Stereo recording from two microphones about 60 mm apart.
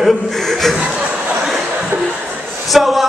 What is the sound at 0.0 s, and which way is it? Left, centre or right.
Speech, centre.